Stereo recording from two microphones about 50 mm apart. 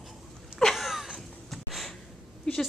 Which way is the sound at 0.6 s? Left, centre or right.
Centre.